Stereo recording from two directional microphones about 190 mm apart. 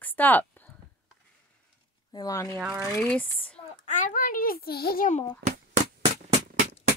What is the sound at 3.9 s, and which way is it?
A child's voice, 40° left (ahead or behind).